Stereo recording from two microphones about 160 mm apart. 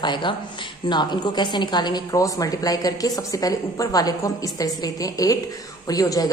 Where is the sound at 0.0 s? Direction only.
30° left (ahead or behind).